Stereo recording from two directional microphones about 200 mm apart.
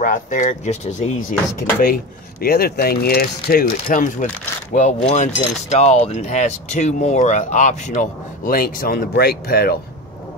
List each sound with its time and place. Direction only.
0.0 s speech: 40° left (ahead or behind)
2.4 s speech: 50° left (ahead or behind)